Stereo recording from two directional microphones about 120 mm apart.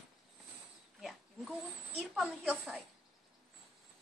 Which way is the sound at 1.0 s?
Centre (ahead or behind).